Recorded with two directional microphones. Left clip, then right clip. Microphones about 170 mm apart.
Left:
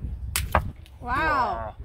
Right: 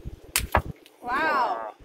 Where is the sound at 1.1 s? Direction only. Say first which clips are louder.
Even; 55° right (ahead or behind).